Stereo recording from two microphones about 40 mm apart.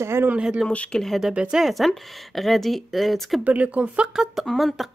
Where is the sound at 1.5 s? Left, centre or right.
Centre.